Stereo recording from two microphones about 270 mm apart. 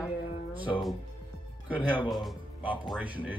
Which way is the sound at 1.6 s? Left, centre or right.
Centre.